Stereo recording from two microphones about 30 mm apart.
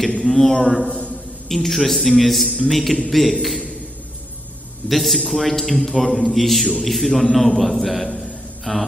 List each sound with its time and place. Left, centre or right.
0.2 s a man's voice: centre
0.8 s a man's voice: left
1.5 s a man's voice: centre
4.8 s a man's voice: centre